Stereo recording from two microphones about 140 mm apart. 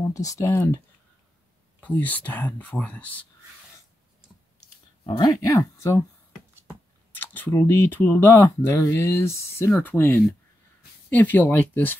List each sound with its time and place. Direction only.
0.1 s speech: 25° left (ahead or behind)
1.8 s speech: 10° left (ahead or behind)
5.0 s speech: 30° left (ahead or behind)
7.2 s speech: 15° left (ahead or behind)